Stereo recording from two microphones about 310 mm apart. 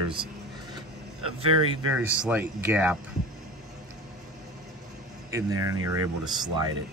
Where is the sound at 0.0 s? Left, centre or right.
Centre.